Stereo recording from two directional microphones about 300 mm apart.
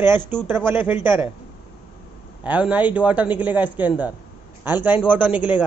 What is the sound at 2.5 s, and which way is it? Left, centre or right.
A man's voice, centre.